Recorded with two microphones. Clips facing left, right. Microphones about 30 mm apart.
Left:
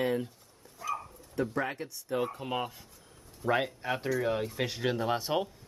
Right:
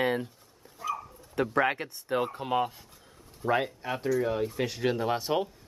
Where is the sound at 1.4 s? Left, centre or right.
Right.